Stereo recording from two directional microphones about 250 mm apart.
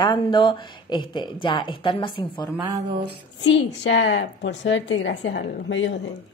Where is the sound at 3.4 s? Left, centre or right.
Left.